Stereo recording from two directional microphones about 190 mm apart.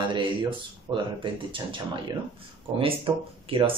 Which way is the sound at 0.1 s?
25° right (ahead or behind).